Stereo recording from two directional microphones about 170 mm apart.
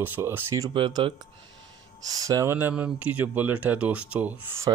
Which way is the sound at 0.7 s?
30° right (ahead or behind).